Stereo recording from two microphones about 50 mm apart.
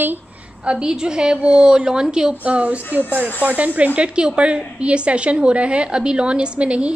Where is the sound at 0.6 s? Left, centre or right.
Centre.